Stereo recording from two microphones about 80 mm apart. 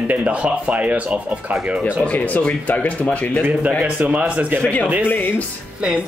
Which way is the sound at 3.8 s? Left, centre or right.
Centre.